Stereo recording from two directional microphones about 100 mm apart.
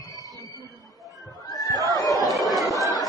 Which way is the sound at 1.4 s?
40° left (ahead or behind).